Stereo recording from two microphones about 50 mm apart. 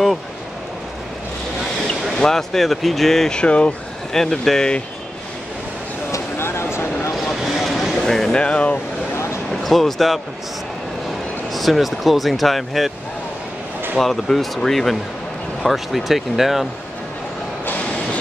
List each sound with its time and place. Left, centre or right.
2.0 s speech: centre
3.3 s speech: centre
4.1 s speech: centre
6.1 s a sound: left
7.4 s a sound: centre
8.4 s speech: left
9.1 s a sound: left
9.5 s speech: centre
11.5 s speech: centre
13.9 s speech: centre